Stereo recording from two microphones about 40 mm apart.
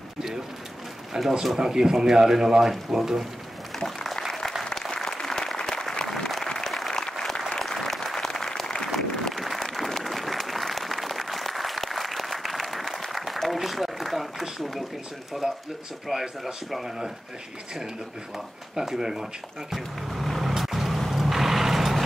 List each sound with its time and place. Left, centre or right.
1.1 s speech: centre
3.8 s applause: centre
7.6 s applause: centre
15.4 s speech: centre
18.8 s speech: centre
19.7 s vehicle: centre